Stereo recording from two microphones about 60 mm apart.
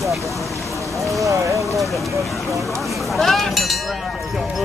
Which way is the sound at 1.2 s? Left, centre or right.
Right.